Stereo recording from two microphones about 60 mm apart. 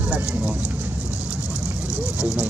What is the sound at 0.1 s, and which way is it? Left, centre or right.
Speech, right.